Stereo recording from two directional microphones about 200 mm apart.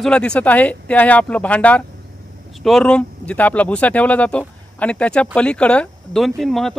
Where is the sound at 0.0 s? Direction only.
5° left (ahead or behind).